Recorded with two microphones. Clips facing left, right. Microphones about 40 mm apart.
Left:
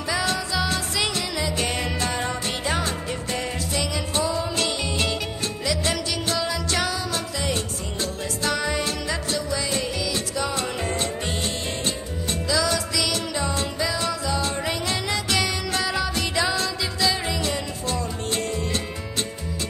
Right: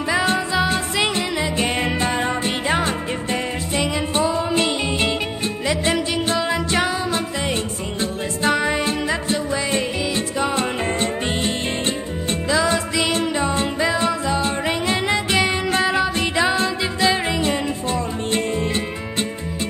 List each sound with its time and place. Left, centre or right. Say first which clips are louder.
0.1 s music: right 5 dB; right